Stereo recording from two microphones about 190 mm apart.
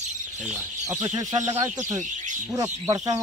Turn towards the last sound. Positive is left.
turn(degrees=-20)  # may be behind; listen again after turning